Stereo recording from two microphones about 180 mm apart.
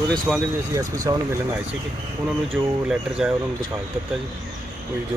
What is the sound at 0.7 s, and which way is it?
Speech, 20° right (ahead or behind).